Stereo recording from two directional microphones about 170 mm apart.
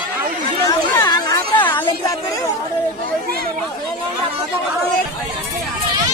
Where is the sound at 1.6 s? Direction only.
10° left (ahead or behind).